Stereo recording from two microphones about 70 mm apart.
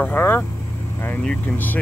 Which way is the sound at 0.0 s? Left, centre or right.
Left.